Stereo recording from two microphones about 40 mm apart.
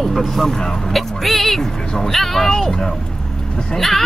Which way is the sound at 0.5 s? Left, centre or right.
Centre.